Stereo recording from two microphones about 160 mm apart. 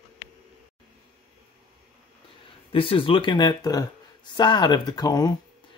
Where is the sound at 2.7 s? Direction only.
35° left (ahead or behind).